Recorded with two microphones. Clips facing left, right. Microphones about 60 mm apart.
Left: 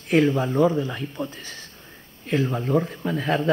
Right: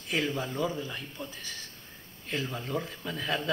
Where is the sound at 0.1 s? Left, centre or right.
Left.